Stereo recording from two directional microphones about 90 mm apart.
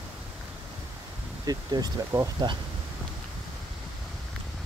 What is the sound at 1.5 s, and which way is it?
Speech, 45° right (ahead or behind).